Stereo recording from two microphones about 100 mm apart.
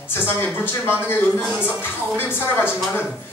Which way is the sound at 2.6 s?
20° left (ahead or behind).